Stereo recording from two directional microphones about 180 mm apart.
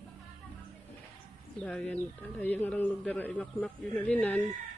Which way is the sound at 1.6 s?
5° left (ahead or behind).